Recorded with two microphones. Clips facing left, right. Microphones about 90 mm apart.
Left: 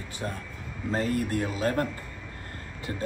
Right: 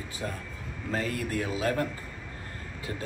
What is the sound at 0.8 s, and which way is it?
Speech, 35° left (ahead or behind).